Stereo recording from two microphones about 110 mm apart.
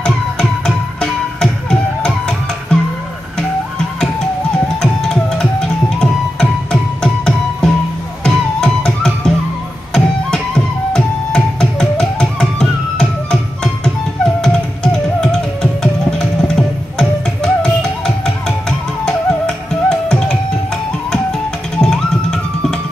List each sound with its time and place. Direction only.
0.0 s music: 5° left (ahead or behind)
4.8 s music: 5° left (ahead or behind)
14.4 s music: 5° left (ahead or behind)